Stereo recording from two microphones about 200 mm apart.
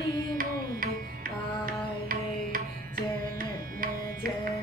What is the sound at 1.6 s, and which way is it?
Music, 45° right (ahead or behind).